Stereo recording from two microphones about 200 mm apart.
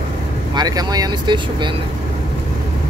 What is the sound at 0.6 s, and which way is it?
Speech, 20° right (ahead or behind).